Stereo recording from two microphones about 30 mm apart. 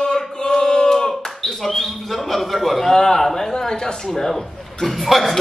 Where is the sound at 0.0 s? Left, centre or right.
Left.